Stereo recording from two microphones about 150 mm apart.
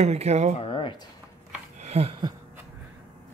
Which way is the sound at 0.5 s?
35° left (ahead or behind).